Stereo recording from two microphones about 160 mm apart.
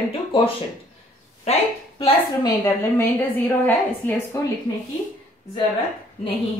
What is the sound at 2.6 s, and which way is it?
A woman's voice, 15° left (ahead or behind).